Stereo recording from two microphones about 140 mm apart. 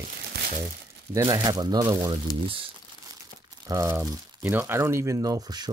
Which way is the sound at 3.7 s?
20° right (ahead or behind).